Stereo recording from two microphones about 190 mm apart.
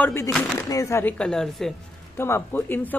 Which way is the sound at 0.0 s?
15° left (ahead or behind).